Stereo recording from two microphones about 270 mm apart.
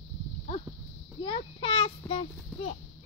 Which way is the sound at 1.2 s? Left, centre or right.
Centre.